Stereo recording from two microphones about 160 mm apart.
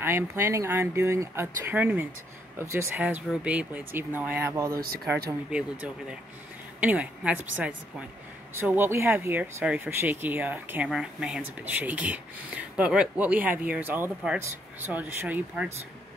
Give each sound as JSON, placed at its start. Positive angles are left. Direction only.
{"t": 0.0, "sound": "speech", "side_deg": -15}
{"t": 4.7, "sound": "speech", "side_deg": -70}
{"t": 5.5, "sound": "speech", "side_deg": -5}